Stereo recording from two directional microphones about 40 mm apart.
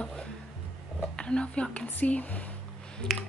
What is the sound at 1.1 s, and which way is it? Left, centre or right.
Speech, left.